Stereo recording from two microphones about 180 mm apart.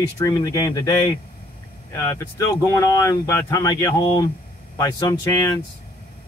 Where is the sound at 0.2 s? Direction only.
20° left (ahead or behind).